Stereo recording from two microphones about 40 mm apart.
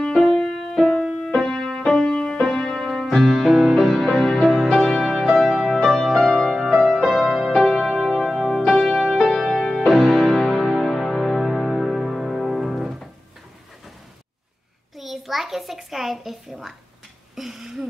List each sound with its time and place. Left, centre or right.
0.1 s music: centre
9.8 s music: centre
10.9 s music: centre
15.0 s a sound: centre